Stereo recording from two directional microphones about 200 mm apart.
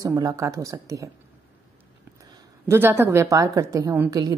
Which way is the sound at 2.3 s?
10° right (ahead or behind).